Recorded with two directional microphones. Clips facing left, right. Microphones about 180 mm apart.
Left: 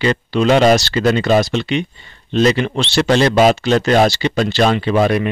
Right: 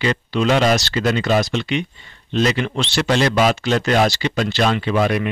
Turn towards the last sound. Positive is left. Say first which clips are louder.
# left 4 dB
turn(degrees=35)  # may be behind; listen again after turning